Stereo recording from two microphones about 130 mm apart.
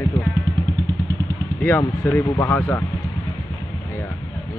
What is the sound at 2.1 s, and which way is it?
Speech, 15° left (ahead or behind).